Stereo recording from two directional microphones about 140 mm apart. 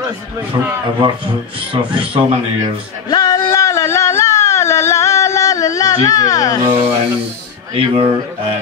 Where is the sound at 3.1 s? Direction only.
25° left (ahead or behind).